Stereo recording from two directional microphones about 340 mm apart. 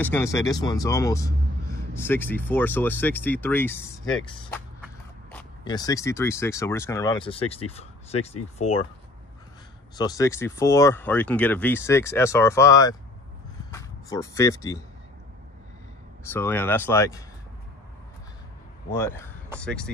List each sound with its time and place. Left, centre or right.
0.0 s speech: centre
9.9 s speech: centre
16.3 s speech: centre
18.9 s speech: centre